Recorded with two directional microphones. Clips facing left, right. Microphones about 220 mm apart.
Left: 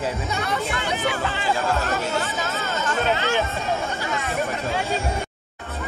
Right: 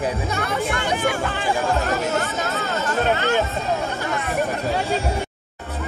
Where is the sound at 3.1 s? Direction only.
55° right (ahead or behind).